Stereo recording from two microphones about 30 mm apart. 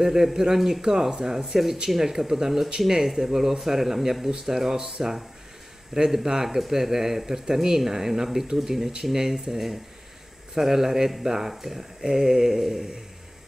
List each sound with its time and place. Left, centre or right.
0.0 s speech: centre
0.8 s speech: right